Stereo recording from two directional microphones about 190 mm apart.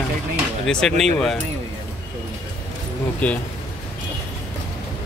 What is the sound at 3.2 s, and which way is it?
Speech, 5° left (ahead or behind).